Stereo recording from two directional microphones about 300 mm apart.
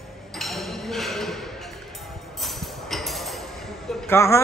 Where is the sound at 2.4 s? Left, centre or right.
Centre.